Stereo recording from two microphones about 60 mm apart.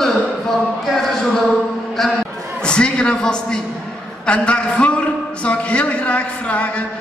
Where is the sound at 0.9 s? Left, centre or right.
Centre.